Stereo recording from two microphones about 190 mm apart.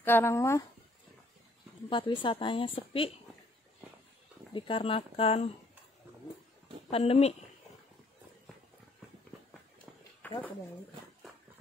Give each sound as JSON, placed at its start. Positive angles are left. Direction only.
{"t": 0.0, "sound": "speech", "side_deg": 10}
{"t": 1.9, "sound": "a woman's voice", "side_deg": 25}
{"t": 4.6, "sound": "a woman's voice", "side_deg": 25}
{"t": 6.9, "sound": "speech", "side_deg": 30}
{"t": 10.2, "sound": "a sound", "side_deg": 10}